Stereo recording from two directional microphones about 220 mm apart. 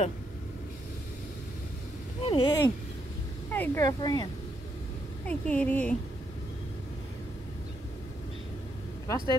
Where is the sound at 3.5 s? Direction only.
10° left (ahead or behind).